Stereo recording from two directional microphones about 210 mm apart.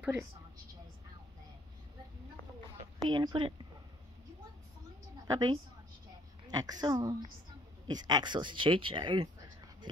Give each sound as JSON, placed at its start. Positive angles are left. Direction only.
{"t": 2.8, "sound": "a woman's voice", "side_deg": -20}
{"t": 5.2, "sound": "a woman's voice", "side_deg": -20}